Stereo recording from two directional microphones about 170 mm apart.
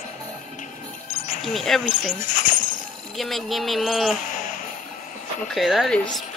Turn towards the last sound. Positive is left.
turn(degrees=0)  # may be behind; listen again after turning